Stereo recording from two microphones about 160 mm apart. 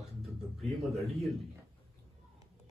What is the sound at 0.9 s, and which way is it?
Speech, 40° right (ahead or behind).